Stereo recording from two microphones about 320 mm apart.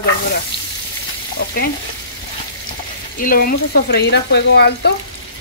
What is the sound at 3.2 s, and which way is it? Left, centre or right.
Speech, left.